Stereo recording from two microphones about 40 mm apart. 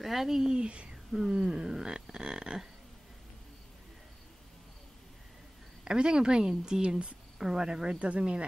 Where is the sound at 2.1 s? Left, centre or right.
Centre.